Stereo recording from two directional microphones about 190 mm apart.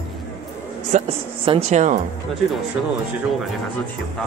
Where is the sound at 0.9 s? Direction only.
30° right (ahead or behind).